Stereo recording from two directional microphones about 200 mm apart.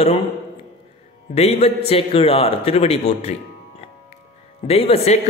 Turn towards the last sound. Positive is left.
turn(degrees=30)  # may be behind; listen again after turning